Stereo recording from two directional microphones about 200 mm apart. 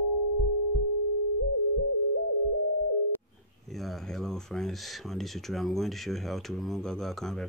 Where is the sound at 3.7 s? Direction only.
Centre (ahead or behind).